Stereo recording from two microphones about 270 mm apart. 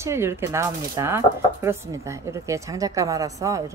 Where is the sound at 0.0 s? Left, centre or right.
Centre.